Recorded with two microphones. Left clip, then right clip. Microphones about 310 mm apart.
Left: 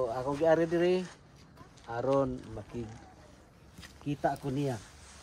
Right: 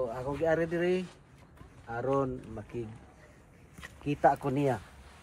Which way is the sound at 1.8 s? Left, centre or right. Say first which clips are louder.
Left 1 dB; centre.